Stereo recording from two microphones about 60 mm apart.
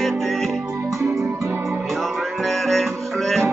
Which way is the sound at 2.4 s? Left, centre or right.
Centre.